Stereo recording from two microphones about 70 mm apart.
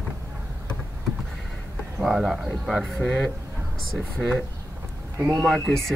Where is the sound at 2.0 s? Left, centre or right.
Centre.